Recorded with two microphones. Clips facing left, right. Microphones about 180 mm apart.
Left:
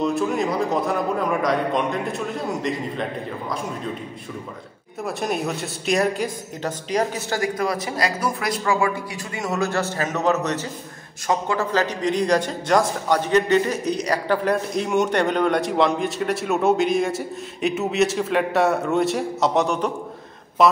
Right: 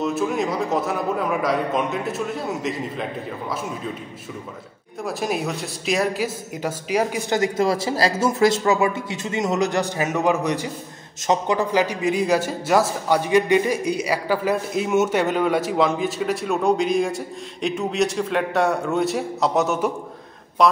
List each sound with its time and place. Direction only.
0.0 s a man's voice: centre (ahead or behind)
5.0 s a woman's voice: centre (ahead or behind)